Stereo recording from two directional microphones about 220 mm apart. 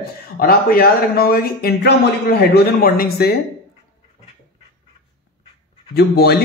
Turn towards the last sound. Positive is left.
turn(degrees=45)  # may be behind; listen again after turning